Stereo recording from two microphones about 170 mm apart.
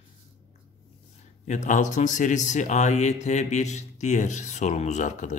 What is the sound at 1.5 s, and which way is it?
Speech, 45° left (ahead or behind).